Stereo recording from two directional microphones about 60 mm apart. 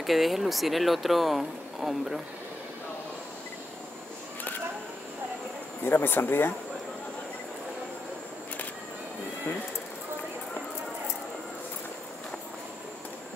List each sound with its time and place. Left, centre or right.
0.0 s speech: centre
5.9 s speech: left